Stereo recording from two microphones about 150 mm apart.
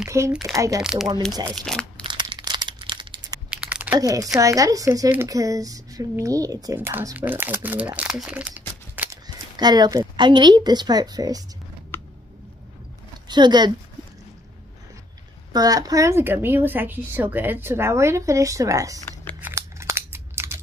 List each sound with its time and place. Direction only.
0.3 s speech: centre (ahead or behind)
0.6 s a woman's voice: 20° right (ahead or behind)
1.5 s speech: 5° left (ahead or behind)
2.0 s crumpling: 30° right (ahead or behind)
3.4 s a sound: 10° right (ahead or behind)
4.0 s a woman's voice: 20° right (ahead or behind)
9.6 s a woman's voice: 25° right (ahead or behind)
11.9 s a sound: 15° left (ahead or behind)
13.3 s a woman's voice: 30° right (ahead or behind)
15.5 s speech: 25° right (ahead or behind)
19.4 s scissors: 15° right (ahead or behind)